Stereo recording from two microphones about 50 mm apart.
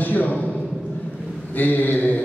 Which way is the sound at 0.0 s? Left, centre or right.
Left.